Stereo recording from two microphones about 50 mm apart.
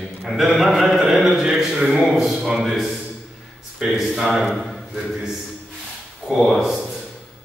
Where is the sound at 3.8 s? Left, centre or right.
Centre.